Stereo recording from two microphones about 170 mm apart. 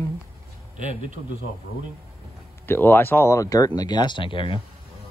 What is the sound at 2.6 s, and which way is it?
Speech, 10° left (ahead or behind).